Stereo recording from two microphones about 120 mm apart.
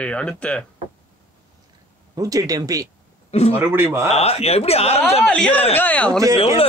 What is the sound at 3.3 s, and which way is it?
Speech, 60° left (ahead or behind).